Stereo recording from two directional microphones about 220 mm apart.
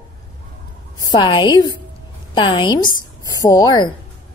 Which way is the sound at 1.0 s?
20° left (ahead or behind).